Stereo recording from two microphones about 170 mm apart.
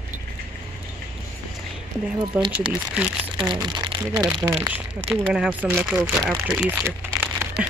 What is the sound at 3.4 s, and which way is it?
Speech, 25° right (ahead or behind).